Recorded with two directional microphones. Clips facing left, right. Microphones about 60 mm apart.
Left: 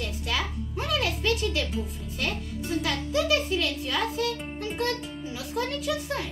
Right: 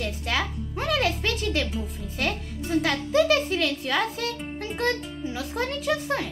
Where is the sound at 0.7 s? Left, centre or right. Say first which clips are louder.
Right 4 dB; right.